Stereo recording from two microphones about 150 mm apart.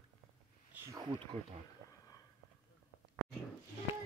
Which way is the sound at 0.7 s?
20° right (ahead or behind).